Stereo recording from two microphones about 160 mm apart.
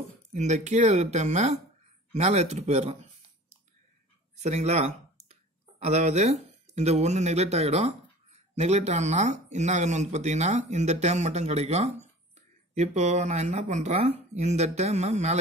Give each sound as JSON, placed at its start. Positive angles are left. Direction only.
{"t": 0.3, "sound": "speech", "side_deg": -50}
{"t": 4.4, "sound": "speech", "side_deg": -45}